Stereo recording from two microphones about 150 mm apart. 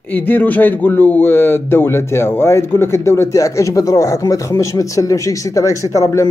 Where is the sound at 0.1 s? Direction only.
10° left (ahead or behind).